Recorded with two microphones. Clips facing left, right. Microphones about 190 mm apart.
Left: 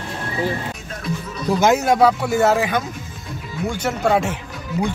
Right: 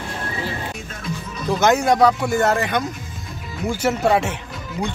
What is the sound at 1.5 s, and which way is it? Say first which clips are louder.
Speech: even; 5° left (ahead or behind).